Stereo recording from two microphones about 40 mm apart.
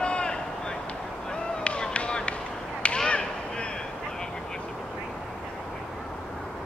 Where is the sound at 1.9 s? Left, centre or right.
Left.